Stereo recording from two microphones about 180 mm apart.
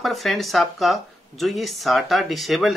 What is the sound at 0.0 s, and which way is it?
Speech, centre (ahead or behind).